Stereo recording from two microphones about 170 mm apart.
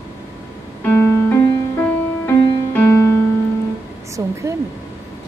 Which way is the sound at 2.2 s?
15° left (ahead or behind).